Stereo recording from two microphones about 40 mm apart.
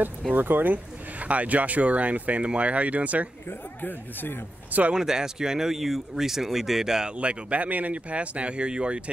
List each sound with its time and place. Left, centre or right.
0.4 s speech: right
1.2 s speech: right
3.4 s speech: left
4.9 s speech: centre
7.1 s speech: right